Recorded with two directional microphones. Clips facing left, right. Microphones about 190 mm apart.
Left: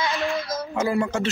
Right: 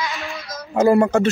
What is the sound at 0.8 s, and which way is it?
Speech, 50° right (ahead or behind).